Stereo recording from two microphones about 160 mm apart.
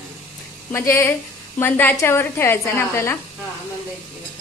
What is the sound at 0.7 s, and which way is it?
A woman's voice, 15° left (ahead or behind).